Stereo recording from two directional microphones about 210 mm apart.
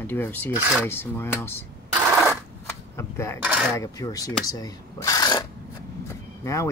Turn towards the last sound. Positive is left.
turn(degrees=15)  # may be behind; listen again after turning